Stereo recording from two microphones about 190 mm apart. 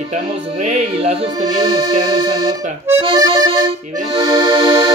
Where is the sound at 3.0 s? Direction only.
30° right (ahead or behind).